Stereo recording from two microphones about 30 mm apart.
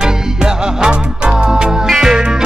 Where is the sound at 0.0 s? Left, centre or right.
Right.